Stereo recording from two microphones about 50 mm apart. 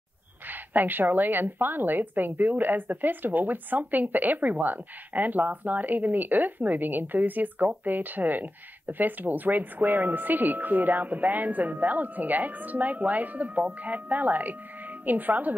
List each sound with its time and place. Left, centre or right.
0.5 s a woman's voice: right